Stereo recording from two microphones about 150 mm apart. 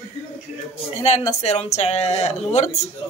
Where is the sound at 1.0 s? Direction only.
45° left (ahead or behind).